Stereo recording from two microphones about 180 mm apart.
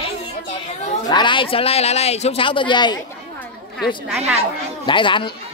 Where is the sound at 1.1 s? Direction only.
25° left (ahead or behind).